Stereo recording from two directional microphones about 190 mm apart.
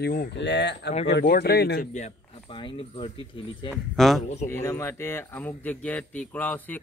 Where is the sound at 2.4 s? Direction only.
25° left (ahead or behind).